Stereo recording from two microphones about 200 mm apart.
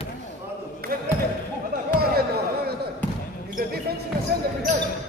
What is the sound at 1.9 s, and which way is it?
Chatter, 50° right (ahead or behind).